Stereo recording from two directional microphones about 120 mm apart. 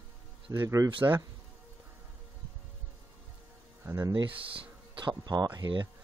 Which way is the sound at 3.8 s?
25° right (ahead or behind).